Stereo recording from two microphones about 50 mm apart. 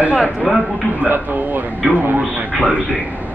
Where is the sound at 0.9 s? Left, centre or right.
Right.